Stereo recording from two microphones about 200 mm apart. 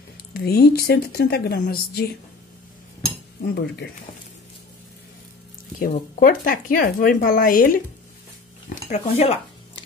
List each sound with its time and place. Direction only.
0.3 s speech: 50° left (ahead or behind)
5.8 s speech: 45° left (ahead or behind)
8.6 s a sound: 40° left (ahead or behind)